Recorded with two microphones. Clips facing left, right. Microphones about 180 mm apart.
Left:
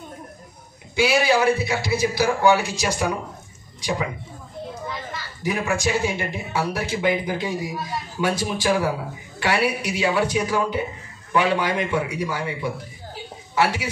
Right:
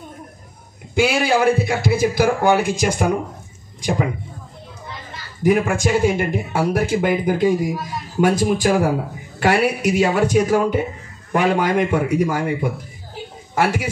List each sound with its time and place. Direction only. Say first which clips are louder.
0.9 s speech: right 2 dB; 50° right (ahead or behind)
5.4 s speech: right 7 dB; 50° right (ahead or behind)